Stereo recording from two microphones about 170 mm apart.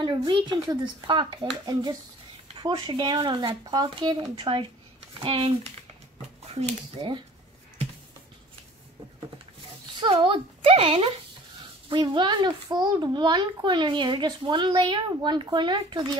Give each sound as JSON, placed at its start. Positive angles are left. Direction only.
{"t": 0.0, "sound": "a child's voice", "side_deg": -25}
{"t": 9.9, "sound": "a child's voice", "side_deg": -25}